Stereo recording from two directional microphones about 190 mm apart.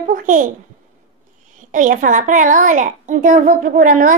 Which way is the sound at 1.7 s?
45° right (ahead or behind).